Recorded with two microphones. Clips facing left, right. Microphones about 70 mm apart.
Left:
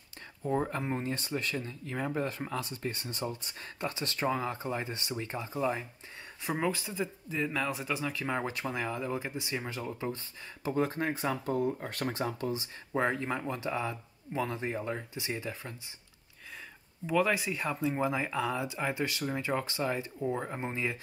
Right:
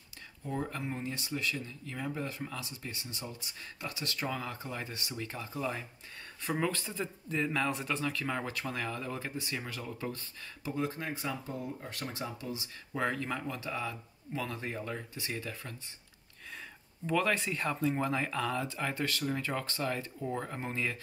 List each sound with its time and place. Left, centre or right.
0.4 s speech: left
3.8 s speech: left
10.7 s speech: left
11.4 s speech: left; by 15.7 s centre
17.0 s speech: centre